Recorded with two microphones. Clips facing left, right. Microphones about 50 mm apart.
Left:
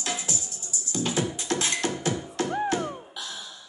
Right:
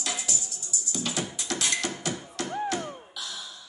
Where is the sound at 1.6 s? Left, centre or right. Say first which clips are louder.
Right 1 dB; left.